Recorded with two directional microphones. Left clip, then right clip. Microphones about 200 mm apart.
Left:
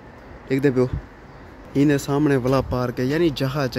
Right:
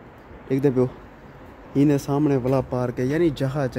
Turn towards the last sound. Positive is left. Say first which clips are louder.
# left 1 dB
turn(degrees=0)  # may be behind; listen again after turning